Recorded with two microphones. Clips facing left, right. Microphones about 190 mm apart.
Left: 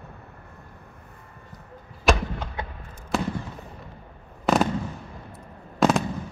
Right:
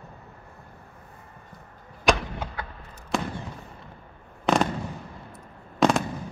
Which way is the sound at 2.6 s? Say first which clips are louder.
Left 3 dB; 25° left (ahead or behind).